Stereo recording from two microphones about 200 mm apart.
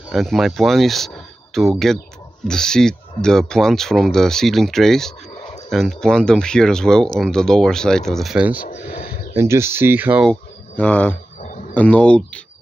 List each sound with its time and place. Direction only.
0.1 s speech: centre (ahead or behind)
8.6 s a sound: 50° left (ahead or behind)
9.3 s speech: 15° right (ahead or behind)
10.8 s speech: 10° left (ahead or behind)
11.4 s a sound: 40° left (ahead or behind)
11.7 s speech: 5° left (ahead or behind)